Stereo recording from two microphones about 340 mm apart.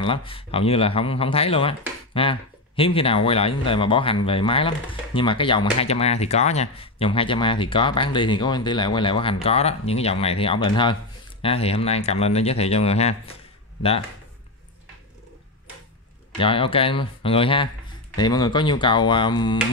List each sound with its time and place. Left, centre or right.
0.0 s speech: centre
16.3 s speech: centre